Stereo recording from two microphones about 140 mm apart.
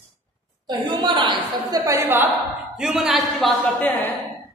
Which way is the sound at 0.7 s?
30° right (ahead or behind).